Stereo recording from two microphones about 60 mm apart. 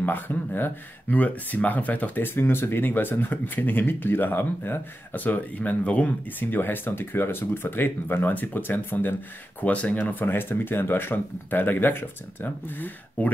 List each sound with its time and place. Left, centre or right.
0.0 s speech: left
9.6 s speech: left